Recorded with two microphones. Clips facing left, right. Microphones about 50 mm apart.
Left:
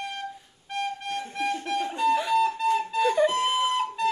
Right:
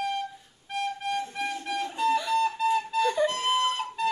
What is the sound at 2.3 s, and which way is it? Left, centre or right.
Music, centre.